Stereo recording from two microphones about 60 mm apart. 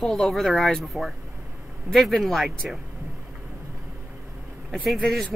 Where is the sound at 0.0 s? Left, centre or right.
Centre.